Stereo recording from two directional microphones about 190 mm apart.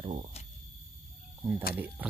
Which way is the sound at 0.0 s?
30° right (ahead or behind).